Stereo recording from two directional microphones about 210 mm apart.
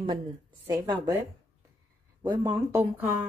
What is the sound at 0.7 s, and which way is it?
Speech, 15° right (ahead or behind).